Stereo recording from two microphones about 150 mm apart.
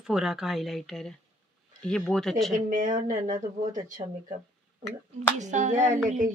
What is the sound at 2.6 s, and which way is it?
Speech, 65° right (ahead or behind).